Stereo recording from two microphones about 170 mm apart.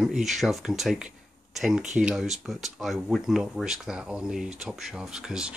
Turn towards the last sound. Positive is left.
turn(degrees=-5)  # may be behind; listen again after turning